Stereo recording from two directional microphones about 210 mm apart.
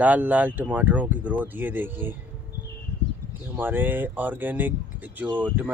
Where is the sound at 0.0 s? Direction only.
5° right (ahead or behind).